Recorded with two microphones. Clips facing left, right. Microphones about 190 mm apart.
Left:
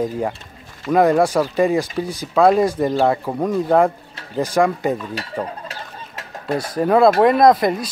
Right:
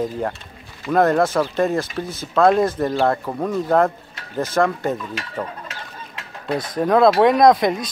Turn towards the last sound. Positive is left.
turn(degrees=5)  # may be behind; listen again after turning